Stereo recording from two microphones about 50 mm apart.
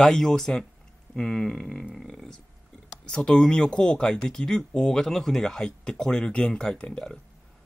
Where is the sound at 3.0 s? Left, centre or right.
Left.